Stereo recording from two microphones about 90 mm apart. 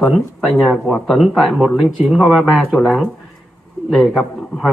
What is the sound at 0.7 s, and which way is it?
A man's voice, 10° left (ahead or behind).